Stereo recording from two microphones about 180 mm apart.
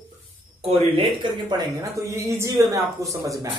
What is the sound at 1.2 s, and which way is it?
Speech, 25° right (ahead or behind).